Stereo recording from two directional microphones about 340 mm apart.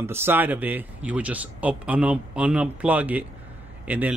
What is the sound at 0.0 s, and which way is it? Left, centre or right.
A man's voice, centre.